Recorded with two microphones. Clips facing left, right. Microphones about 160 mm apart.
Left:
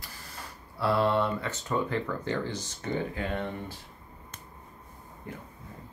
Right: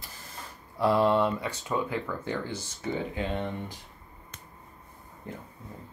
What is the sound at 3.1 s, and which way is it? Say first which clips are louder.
Speech: right 1 dB; 20° right (ahead or behind).